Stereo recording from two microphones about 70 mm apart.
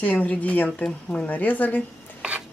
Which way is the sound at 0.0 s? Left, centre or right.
Left.